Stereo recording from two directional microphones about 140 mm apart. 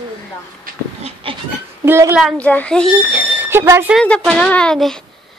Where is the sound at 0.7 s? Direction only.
90° right.